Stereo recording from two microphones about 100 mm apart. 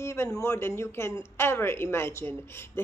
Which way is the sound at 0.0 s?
25° left (ahead or behind).